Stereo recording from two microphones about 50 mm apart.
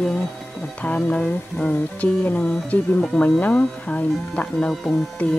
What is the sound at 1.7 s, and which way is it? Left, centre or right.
Speech, left.